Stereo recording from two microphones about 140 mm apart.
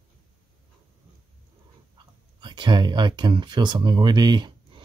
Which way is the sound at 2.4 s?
35° right (ahead or behind).